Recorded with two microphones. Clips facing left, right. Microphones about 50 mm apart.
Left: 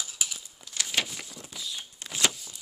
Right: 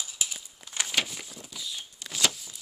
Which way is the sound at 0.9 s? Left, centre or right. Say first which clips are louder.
Even; centre.